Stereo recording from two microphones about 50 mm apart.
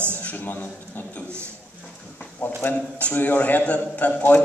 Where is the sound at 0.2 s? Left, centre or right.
Left.